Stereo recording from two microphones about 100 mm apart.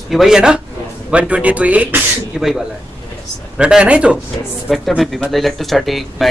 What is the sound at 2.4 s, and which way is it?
Speech, 5° right (ahead or behind).